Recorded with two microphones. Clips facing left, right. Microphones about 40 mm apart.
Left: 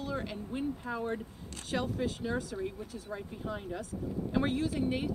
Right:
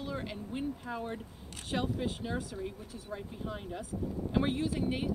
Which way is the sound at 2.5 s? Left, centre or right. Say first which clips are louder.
Left 3 dB; centre.